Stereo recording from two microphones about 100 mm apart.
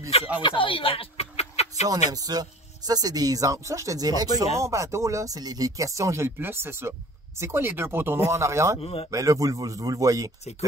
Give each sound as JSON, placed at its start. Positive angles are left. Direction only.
{"t": 0.4, "sound": "a sound", "side_deg": 60}
{"t": 1.9, "sound": "speech", "side_deg": -40}
{"t": 4.6, "sound": "speech", "side_deg": -30}
{"t": 8.8, "sound": "speech", "side_deg": 80}
{"t": 9.1, "sound": "speech", "side_deg": -35}